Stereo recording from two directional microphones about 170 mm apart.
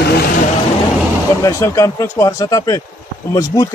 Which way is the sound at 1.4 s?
20° left (ahead or behind).